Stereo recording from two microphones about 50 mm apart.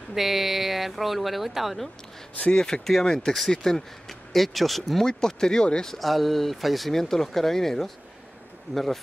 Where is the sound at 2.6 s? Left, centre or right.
Centre.